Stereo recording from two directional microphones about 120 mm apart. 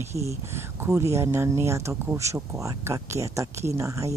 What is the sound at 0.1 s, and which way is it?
Speech, 25° right (ahead or behind).